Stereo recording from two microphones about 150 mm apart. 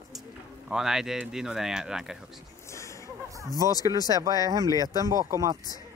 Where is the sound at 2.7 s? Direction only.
20° left (ahead or behind).